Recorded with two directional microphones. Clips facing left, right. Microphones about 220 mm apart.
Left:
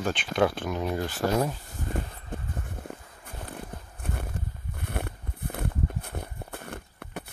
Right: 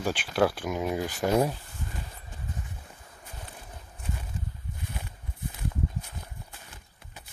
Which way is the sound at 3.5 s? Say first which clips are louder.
Left 7 dB; 60° left (ahead or behind).